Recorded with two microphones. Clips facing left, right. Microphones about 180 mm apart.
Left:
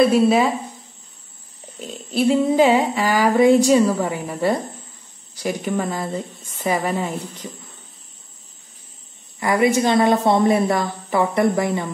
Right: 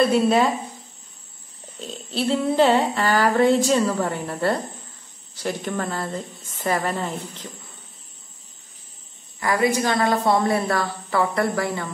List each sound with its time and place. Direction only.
0.0 s speech: 5° left (ahead or behind)
1.8 s a sound: 10° left (ahead or behind)
9.4 s a woman's voice: 20° left (ahead or behind)